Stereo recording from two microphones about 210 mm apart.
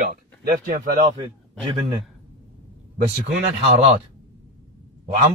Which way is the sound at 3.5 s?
30° right (ahead or behind).